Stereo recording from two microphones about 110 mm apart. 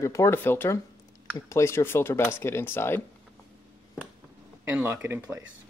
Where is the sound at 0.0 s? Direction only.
25° left (ahead or behind).